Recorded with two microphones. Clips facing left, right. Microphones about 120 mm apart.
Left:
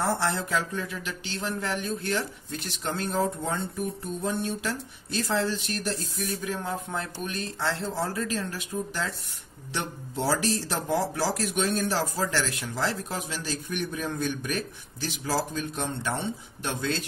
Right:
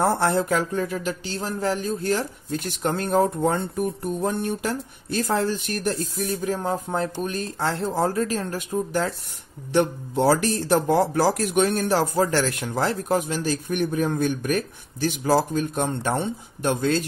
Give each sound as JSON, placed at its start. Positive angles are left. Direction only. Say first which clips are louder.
{"t": 0.0, "sound": "speech", "louder": "right 6 dB", "side_deg": -50}